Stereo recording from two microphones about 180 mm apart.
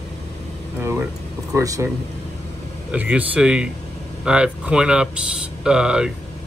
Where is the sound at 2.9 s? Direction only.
10° right (ahead or behind).